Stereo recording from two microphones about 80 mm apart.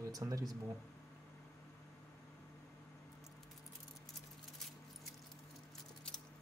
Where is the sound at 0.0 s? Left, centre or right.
Right.